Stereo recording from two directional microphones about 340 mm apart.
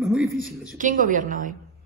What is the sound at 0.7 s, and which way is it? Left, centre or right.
Speech, right.